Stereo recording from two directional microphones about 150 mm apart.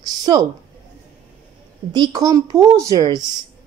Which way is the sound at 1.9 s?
25° right (ahead or behind).